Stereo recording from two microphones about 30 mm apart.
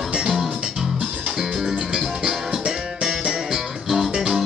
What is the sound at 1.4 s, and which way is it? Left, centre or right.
Music, centre.